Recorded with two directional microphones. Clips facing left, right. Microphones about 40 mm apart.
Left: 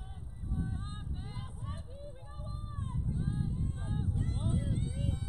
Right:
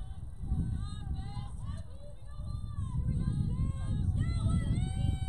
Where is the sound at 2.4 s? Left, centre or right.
Left.